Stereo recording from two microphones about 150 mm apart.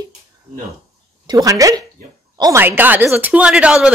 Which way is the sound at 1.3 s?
25° right (ahead or behind).